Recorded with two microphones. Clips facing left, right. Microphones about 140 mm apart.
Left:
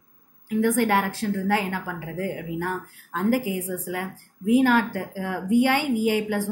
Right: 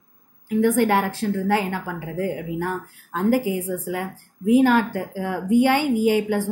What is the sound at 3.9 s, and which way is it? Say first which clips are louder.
A woman's voice: right 3 dB; 30° right (ahead or behind).